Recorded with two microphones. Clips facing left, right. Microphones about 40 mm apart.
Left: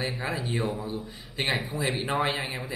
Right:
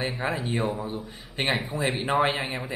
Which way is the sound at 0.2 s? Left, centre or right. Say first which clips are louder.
Right 2 dB; right.